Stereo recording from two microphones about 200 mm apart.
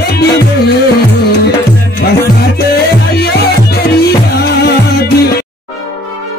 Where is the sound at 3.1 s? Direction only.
55° left (ahead or behind).